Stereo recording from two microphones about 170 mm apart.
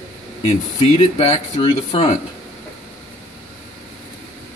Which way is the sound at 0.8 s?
40° left (ahead or behind).